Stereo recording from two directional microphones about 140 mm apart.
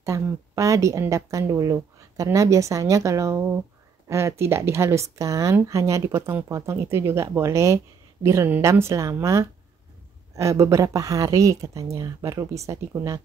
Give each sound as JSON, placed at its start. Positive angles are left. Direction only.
{"t": 0.0, "sound": "speech", "side_deg": -25}